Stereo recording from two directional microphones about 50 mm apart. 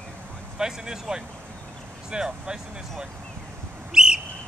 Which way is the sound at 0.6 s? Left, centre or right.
Centre.